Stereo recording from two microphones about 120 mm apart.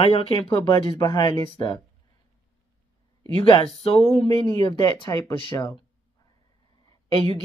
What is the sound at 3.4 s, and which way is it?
Speech, 50° left (ahead or behind).